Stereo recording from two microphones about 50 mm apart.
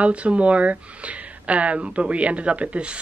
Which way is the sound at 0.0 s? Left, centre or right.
Right.